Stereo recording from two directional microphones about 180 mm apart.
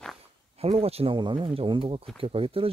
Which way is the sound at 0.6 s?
35° right (ahead or behind).